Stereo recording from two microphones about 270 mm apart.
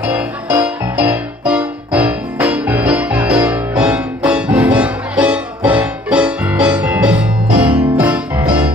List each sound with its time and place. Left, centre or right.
0.0 s music: centre